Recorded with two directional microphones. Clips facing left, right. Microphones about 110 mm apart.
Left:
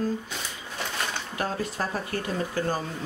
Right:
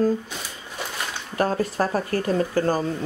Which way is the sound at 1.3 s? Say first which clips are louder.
Right 11 dB; 45° right (ahead or behind).